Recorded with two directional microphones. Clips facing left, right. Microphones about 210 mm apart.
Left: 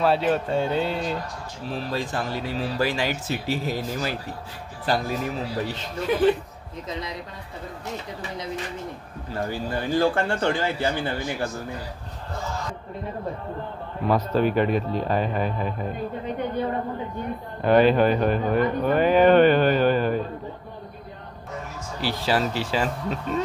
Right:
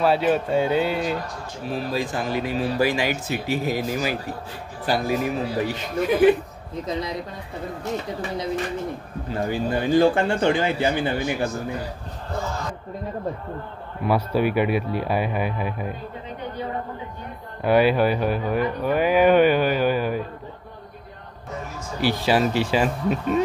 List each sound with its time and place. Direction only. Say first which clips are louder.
0.0 s speech: right 2 dB; 5° right (ahead or behind)
6.9 s speech: right 5 dB; 35° right (ahead or behind)
9.3 s speech: right 4 dB; 20° right (ahead or behind)
14.0 s speech: even; 10° right (ahead or behind)
17.6 s speech: left 1 dB; 10° right (ahead or behind)
22.0 s speech: right 4 dB; 15° right (ahead or behind)